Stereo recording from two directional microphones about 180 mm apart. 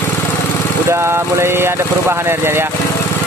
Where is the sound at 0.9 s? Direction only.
15° right (ahead or behind).